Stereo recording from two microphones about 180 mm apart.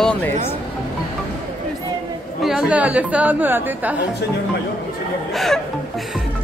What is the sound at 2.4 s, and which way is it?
A woman's voice, centre (ahead or behind).